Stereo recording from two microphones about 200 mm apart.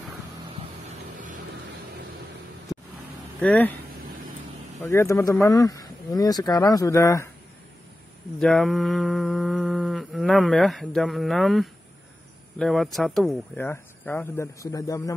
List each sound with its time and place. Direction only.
3.3 s speech: 10° left (ahead or behind)
4.8 s speech: 15° left (ahead or behind)
8.4 s mantra: centre (ahead or behind)
13.6 s speech: 10° left (ahead or behind)